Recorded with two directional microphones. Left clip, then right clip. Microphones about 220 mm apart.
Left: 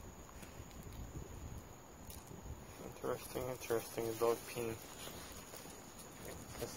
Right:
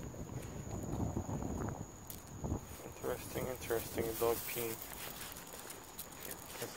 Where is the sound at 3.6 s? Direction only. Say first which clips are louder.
Right 1 dB; 10° left (ahead or behind).